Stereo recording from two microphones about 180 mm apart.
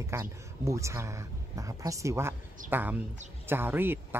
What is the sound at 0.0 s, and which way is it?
Speech, 15° right (ahead or behind).